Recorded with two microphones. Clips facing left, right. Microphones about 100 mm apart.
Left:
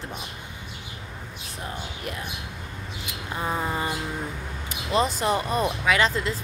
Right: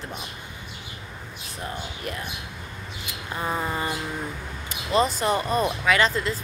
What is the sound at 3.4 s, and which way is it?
Speech, 10° left (ahead or behind).